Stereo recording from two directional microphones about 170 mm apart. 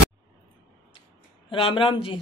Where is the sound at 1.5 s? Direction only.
30° left (ahead or behind).